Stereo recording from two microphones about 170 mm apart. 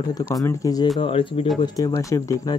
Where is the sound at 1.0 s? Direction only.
35° left (ahead or behind).